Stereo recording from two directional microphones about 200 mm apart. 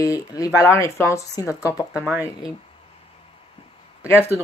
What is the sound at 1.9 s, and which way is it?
Speech, 5° right (ahead or behind).